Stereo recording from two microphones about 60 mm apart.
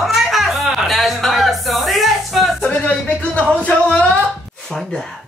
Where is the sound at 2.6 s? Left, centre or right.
Left.